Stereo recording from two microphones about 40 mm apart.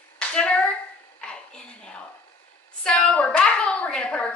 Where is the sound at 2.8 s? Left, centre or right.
Centre.